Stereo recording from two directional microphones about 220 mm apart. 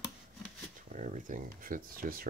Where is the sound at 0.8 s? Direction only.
35° right (ahead or behind).